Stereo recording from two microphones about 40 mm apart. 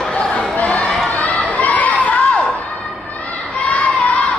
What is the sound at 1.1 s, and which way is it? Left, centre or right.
Crowd, left.